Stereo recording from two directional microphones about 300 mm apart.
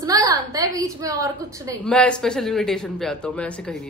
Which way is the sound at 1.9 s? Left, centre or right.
Centre.